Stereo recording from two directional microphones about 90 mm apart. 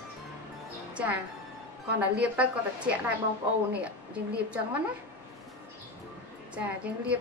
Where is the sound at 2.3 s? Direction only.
15° right (ahead or behind).